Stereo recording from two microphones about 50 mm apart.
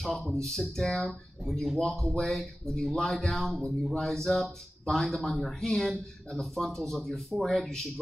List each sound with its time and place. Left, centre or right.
0.0 s speech: centre